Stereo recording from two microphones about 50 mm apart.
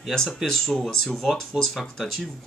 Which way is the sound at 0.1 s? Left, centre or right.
Centre.